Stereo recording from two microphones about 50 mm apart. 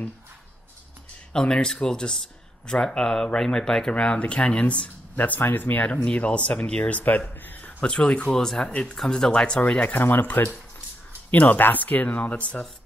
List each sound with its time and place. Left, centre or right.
1.3 s speech: centre; by 7.7 s left
7.8 s speech: left
9.6 s speech: left
9.9 s speech: left
11.3 s speech: left